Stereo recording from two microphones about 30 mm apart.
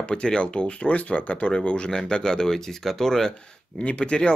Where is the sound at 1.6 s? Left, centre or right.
Left.